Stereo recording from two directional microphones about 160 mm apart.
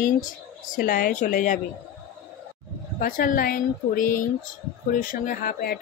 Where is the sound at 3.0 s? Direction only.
60° left (ahead or behind).